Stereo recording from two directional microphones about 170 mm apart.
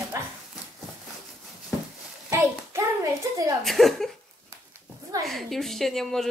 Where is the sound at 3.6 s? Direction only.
Centre (ahead or behind).